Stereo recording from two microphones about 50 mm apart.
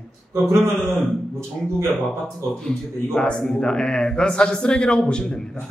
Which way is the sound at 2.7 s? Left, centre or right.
Centre.